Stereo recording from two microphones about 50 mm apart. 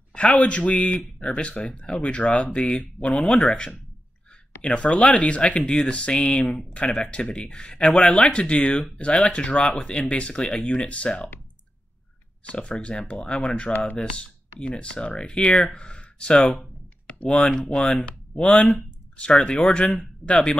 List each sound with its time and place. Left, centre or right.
0.1 s speech: left
12.4 s speech: centre